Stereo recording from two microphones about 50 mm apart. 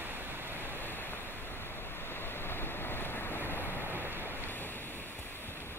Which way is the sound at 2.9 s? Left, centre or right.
Left.